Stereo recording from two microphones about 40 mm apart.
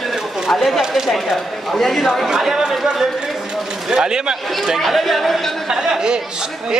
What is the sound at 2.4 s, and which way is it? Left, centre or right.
A man's voice, centre.